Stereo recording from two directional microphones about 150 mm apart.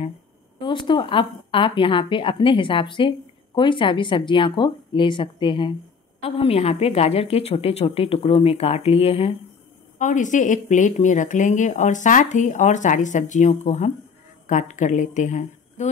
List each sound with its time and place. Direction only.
0.6 s a woman's voice: 30° left (ahead or behind)
9.9 s a woman's voice: 55° left (ahead or behind)